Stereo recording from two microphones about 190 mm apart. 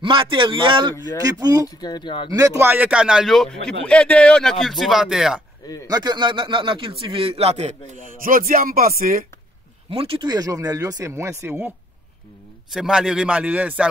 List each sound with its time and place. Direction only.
0.0 s a man's voice: 25° right (ahead or behind)
1.8 s speech: 20° left (ahead or behind)
2.3 s speech: 15° right (ahead or behind)
5.9 s a man's voice: 20° right (ahead or behind)
8.2 s speech: 50° right (ahead or behind)
9.8 s a man's voice: 30° right (ahead or behind); by 11.7 s 15° right (ahead or behind)
12.7 s speech: 5° right (ahead or behind)